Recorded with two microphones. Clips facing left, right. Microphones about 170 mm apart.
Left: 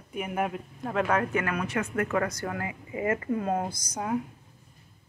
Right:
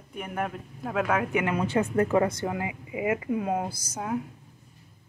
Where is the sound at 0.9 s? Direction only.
5° right (ahead or behind).